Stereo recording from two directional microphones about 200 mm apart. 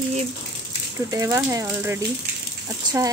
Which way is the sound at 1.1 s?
15° right (ahead or behind).